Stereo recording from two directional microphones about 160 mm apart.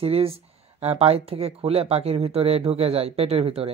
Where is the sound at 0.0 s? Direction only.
35° right (ahead or behind).